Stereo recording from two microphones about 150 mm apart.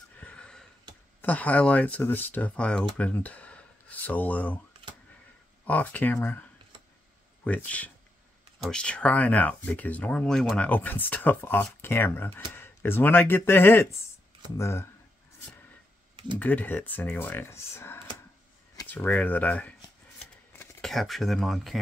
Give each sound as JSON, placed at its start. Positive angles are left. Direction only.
{"t": 0.2, "sound": "a sound", "side_deg": 5}
{"t": 1.2, "sound": "speech", "side_deg": 10}
{"t": 5.7, "sound": "speech", "side_deg": 10}
{"t": 7.4, "sound": "speech", "side_deg": 10}
{"t": 16.3, "sound": "speech", "side_deg": 10}
{"t": 20.8, "sound": "speech", "side_deg": 0}